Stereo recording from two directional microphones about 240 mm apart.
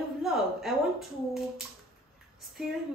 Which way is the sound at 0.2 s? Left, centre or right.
Centre.